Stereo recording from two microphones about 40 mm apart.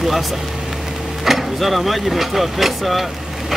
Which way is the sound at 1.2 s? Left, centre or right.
Centre.